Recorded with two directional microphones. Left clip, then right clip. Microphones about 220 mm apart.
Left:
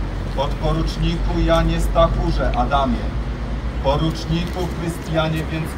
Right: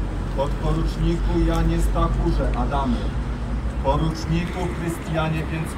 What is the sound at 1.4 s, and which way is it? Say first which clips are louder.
A man's voice: left 8 dB; 5° left (ahead or behind).